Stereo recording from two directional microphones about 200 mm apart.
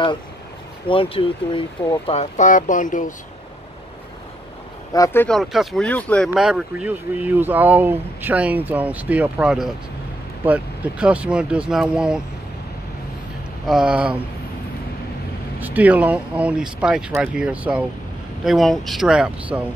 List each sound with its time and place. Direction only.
0.8 s speech: 25° left (ahead or behind)
4.9 s speech: 15° left (ahead or behind); by 12.2 s 5° right (ahead or behind)
13.7 s speech: 5° right (ahead or behind)
15.6 s speech: 10° right (ahead or behind)